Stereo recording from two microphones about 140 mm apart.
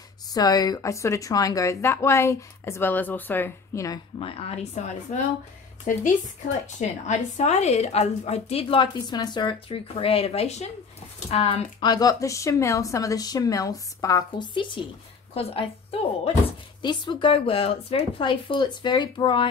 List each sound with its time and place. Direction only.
0.3 s speech: 25° left (ahead or behind)
4.2 s a woman's voice: 45° left (ahead or behind)
11.8 s a woman's voice: 25° left (ahead or behind)